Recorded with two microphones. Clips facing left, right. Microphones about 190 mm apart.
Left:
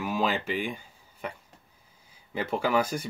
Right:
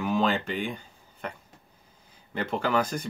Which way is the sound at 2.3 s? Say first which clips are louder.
Even; 10° left (ahead or behind).